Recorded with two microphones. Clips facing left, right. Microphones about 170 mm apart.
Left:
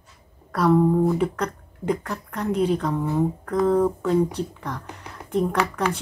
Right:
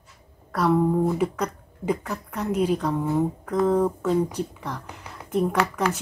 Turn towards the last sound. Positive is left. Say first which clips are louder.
# even
turn(degrees=0)  # may be behind; listen again after turning